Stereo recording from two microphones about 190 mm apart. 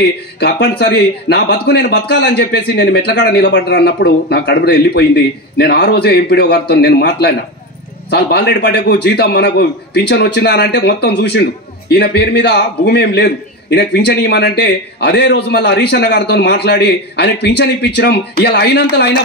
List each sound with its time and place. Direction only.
0.4 s a man's voice: 60° left (ahead or behind)